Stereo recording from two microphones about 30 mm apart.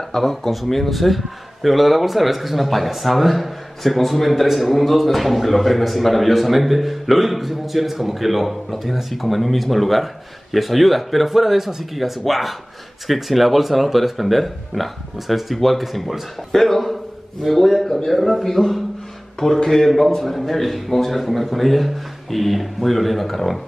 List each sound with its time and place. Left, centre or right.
0.1 s speech: centre
16.5 s a man's voice: centre